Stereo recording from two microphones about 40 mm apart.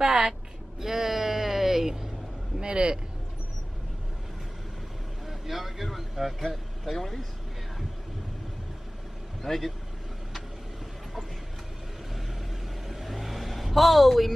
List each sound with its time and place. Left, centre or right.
0.0 s a sound: centre
2.6 s speech: right
5.2 s vehicle: centre
9.4 s speech: centre
12.8 s vehicle: centre